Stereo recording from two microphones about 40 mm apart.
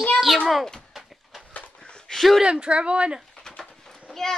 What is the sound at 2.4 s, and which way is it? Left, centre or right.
Speech, right.